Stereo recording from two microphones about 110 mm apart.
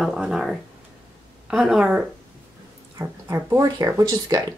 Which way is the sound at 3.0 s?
25° right (ahead or behind).